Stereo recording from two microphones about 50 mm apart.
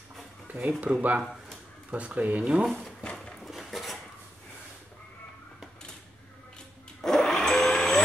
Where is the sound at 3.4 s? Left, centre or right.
Centre.